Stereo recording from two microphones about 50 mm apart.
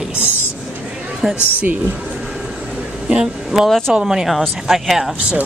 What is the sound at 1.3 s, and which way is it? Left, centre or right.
Speech, left.